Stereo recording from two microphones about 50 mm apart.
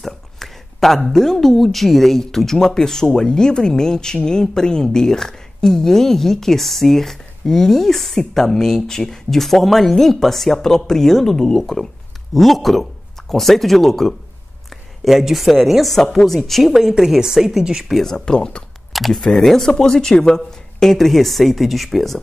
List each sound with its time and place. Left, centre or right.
0.0 s a woman's voice: centre
18.1 s a woman's voice: centre
18.9 s a woman's voice: centre